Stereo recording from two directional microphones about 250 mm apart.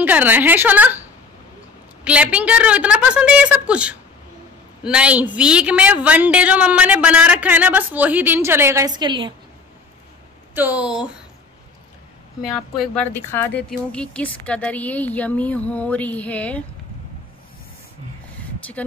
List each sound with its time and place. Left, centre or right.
0.0 s a woman's voice: centre
2.0 s a woman's voice: centre
10.5 s a woman's voice: centre
12.5 s a woman's voice: centre